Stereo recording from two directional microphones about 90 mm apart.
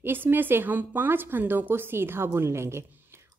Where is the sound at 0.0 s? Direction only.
25° right (ahead or behind).